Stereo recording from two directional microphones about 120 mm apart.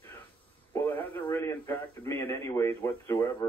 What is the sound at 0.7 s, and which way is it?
Speech, 15° left (ahead or behind).